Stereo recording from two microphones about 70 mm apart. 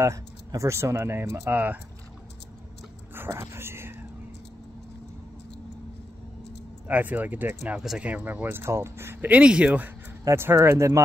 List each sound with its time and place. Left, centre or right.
0.6 s speech: right
3.3 s dog: right
6.9 s speech: right
9.3 s speech: centre
10.3 s speech: right